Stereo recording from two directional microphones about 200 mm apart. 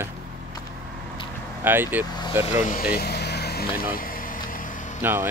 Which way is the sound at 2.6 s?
45° left (ahead or behind).